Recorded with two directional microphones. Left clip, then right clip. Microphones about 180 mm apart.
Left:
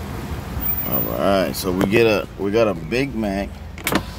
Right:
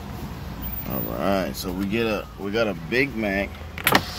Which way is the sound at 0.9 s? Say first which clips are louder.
Left 5 dB; 5° left (ahead or behind).